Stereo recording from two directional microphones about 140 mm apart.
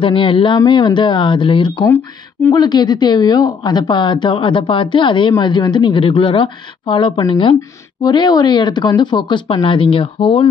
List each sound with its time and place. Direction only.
0.0 s a woman's voice: 40° left (ahead or behind)